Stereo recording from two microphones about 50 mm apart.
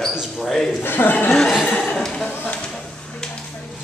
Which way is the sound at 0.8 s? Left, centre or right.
Left.